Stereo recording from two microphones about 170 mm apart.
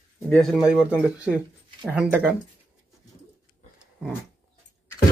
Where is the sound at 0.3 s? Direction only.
5° left (ahead or behind).